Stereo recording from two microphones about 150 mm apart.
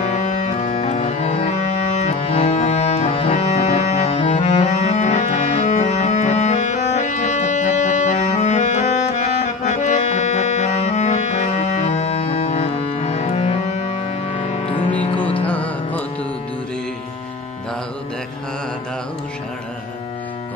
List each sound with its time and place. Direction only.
0.0 s music: 45° left (ahead or behind)
14.7 s music: 10° left (ahead or behind)